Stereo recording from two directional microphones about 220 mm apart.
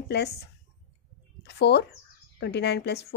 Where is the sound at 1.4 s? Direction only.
50° left (ahead or behind).